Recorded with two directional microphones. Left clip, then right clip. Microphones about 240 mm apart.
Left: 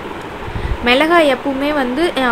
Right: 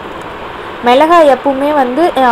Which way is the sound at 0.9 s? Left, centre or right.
Centre.